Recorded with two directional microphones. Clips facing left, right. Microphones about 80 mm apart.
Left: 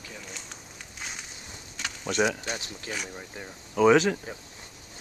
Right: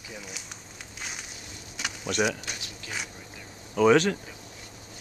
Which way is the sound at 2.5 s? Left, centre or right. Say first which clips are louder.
Left 5 dB; left.